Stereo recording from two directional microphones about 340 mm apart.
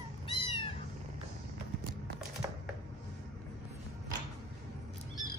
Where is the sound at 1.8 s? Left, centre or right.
Right.